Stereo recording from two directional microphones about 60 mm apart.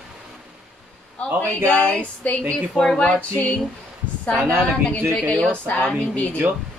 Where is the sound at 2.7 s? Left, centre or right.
Centre.